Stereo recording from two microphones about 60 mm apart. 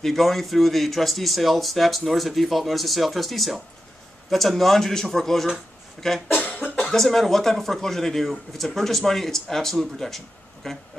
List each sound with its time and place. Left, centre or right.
0.0 s a man's voice: centre
6.3 s cough: left
6.9 s a man's voice: centre